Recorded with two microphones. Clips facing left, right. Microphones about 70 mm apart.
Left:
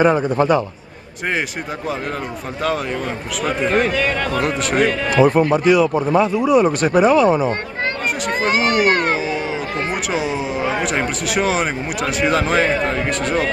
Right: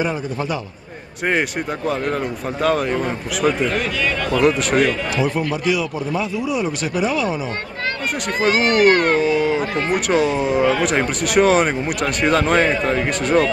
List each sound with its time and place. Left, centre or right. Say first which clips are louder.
0.0 s a man's voice: left 8 dB; left
2.6 s speech: right 3 dB; centre
3.6 s a man's voice: left 4 dB; left
4.4 s speech: right 3 dB; centre
4.7 s a man's voice: left 3 dB; left
8.5 s speech: right 3 dB; centre